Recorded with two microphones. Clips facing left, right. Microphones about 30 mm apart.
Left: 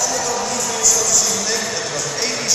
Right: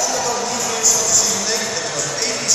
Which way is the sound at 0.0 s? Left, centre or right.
Centre.